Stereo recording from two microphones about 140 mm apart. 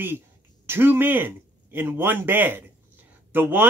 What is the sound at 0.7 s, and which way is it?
Speech, 15° right (ahead or behind).